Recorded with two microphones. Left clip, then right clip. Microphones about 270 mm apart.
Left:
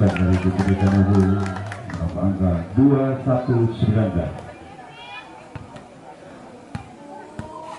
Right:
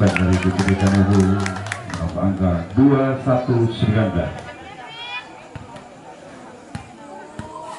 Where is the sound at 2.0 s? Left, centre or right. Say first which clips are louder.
Right 1 dB; left.